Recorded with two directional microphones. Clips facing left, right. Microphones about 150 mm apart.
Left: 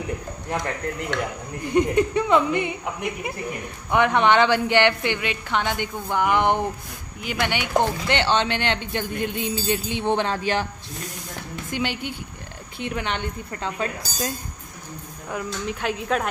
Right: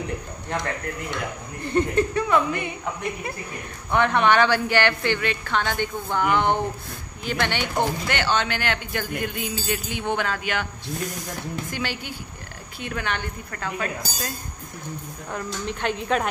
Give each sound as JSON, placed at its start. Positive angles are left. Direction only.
{"t": 1.6, "sound": "a woman's voice", "side_deg": 15}
{"t": 8.1, "sound": "speech", "side_deg": 25}
{"t": 11.7, "sound": "speech", "side_deg": 20}
{"t": 15.3, "sound": "a woman's voice", "side_deg": 5}